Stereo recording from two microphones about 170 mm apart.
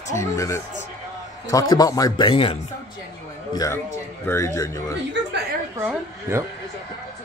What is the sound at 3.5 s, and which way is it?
A man's voice, 20° left (ahead or behind).